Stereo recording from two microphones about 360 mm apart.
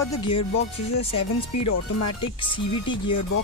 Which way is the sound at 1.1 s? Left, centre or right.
Left.